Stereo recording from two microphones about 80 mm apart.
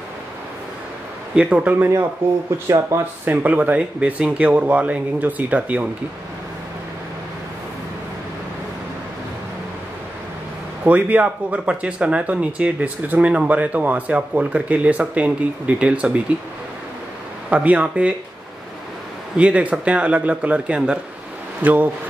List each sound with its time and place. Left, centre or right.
1.3 s speech: centre
2.9 s speech: right
3.3 s speech: right
10.8 s speech: centre
17.5 s speech: centre
19.3 s a man's voice: centre